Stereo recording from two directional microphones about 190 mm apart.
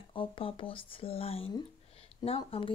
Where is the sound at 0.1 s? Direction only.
30° left (ahead or behind).